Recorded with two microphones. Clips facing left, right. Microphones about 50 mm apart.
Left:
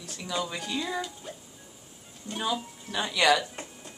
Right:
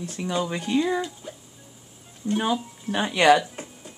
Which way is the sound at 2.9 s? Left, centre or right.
Right.